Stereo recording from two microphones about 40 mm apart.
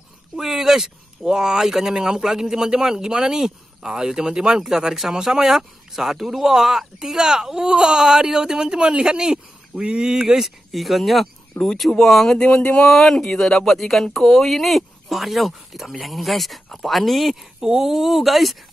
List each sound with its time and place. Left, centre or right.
0.4 s speech: centre; by 10.0 s right
10.0 s speech: centre
12.4 s speech: left
12.8 s speech: centre
17.6 s speech: centre